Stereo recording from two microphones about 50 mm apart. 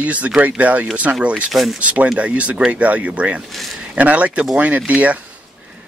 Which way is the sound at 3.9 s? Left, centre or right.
Right.